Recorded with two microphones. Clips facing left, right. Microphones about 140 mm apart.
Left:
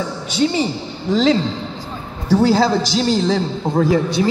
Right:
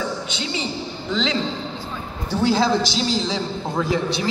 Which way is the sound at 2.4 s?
40° left (ahead or behind).